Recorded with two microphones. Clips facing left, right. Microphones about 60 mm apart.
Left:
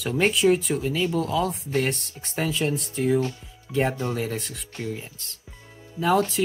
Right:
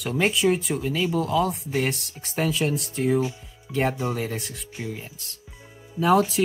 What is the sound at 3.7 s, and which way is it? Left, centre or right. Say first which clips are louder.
Speech: even; centre.